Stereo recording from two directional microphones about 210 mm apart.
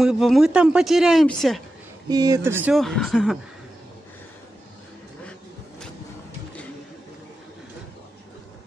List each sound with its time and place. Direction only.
0.0 s speech: centre (ahead or behind)
2.0 s speech: 15° right (ahead or behind)
2.7 s speech: centre (ahead or behind)